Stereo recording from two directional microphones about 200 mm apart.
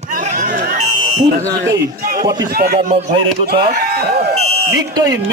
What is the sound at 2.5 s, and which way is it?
Speech, 50° right (ahead or behind).